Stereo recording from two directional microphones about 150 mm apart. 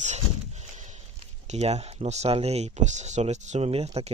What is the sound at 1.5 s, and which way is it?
Speech, 45° right (ahead or behind).